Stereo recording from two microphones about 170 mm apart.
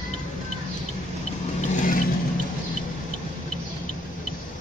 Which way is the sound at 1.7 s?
50° left (ahead or behind).